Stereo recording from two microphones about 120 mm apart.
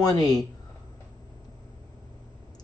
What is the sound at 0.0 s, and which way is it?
Speech, 35° left (ahead or behind).